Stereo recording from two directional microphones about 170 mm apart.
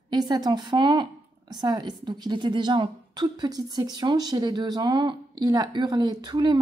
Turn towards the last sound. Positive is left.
turn(degrees=-25)  # may be behind; listen again after turning